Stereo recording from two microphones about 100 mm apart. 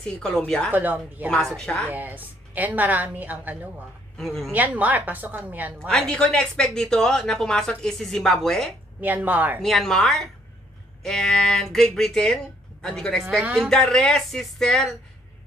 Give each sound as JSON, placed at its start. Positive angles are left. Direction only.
{"t": 0.0, "sound": "a woman's voice", "side_deg": 5}
{"t": 0.7, "sound": "a woman's voice", "side_deg": -20}
{"t": 1.6, "sound": "a woman's voice", "side_deg": 5}
{"t": 1.9, "sound": "a woman's voice", "side_deg": -15}
{"t": 4.2, "sound": "speech", "side_deg": 0}
{"t": 4.5, "sound": "a woman's voice", "side_deg": -15}
{"t": 5.8, "sound": "speech", "side_deg": 5}
{"t": 9.0, "sound": "a woman's voice", "side_deg": -15}
{"t": 9.6, "sound": "speech", "side_deg": 5}